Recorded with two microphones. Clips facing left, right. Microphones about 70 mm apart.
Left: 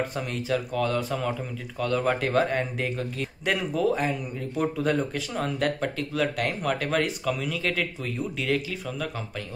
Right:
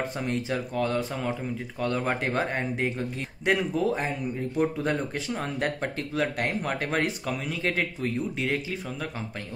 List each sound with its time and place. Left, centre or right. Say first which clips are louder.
0.0 s speech: even; right